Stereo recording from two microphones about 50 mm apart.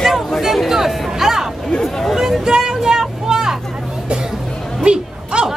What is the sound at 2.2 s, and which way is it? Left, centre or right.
Vehicle, centre.